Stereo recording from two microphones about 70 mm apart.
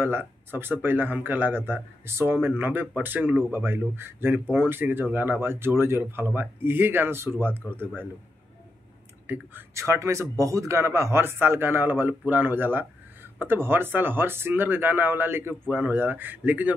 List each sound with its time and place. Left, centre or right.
0.0 s speech: right
9.3 s speech: right
9.8 s speech: right